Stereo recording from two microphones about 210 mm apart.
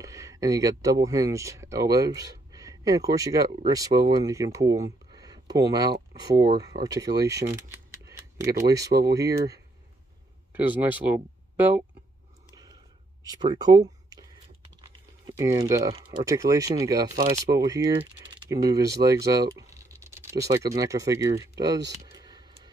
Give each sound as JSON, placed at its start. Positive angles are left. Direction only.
{"t": 0.0, "sound": "speech", "side_deg": -15}
{"t": 13.2, "sound": "speech", "side_deg": -20}
{"t": 15.2, "sound": "speech", "side_deg": -15}
{"t": 22.0, "sound": "a sound", "side_deg": -20}